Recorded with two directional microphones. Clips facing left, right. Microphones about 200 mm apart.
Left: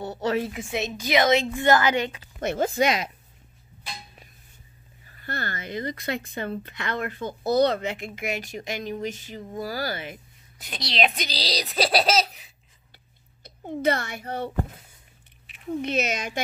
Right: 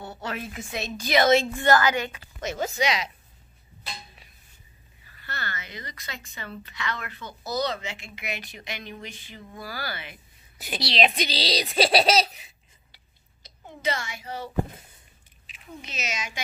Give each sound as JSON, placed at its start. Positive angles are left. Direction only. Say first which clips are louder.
{"t": 0.0, "sound": "a woman's voice", "louder": "left 8 dB", "side_deg": 20}
{"t": 2.4, "sound": "speech", "louder": "left 4 dB", "side_deg": 55}
{"t": 5.0, "sound": "speech", "louder": "left 5 dB", "side_deg": 50}
{"t": 10.6, "sound": "speech", "louder": "right 1 dB", "side_deg": -5}
{"t": 12.9, "sound": "a sound", "louder": "left 5 dB", "side_deg": 55}
{"t": 15.4, "sound": "speech", "louder": "left 14 dB", "side_deg": 55}